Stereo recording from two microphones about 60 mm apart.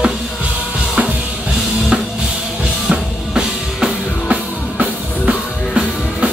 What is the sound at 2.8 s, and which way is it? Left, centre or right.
Music, centre.